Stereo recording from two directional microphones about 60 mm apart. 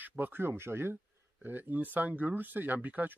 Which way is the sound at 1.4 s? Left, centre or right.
Right.